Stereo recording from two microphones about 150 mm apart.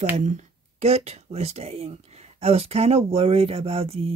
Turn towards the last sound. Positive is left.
turn(degrees=-40)  # may be behind; listen again after turning